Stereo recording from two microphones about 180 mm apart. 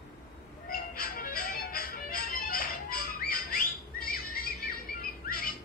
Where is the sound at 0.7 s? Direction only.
55° left (ahead or behind).